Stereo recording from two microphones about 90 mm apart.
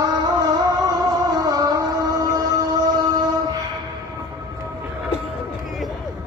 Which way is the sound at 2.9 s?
45° right (ahead or behind).